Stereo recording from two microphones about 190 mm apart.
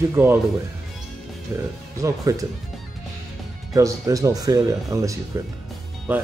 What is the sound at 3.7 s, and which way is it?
Speech, 15° right (ahead or behind).